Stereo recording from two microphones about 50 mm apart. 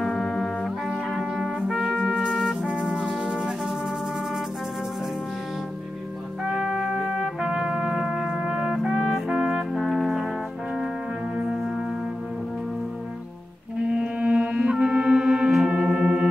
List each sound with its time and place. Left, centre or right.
0.0 s music: centre
0.8 s trumpet: centre
2.6 s music: centre
6.4 s music: centre
7.4 s trumpet: centre
9.3 s music: centre
13.8 s whale vocalization: right
14.8 s music: centre